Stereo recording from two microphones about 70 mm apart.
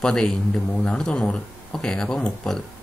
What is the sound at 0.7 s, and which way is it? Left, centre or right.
Speech, left.